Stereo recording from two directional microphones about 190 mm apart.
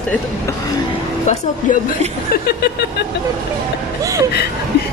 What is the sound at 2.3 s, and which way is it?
Chuckle, 55° left (ahead or behind).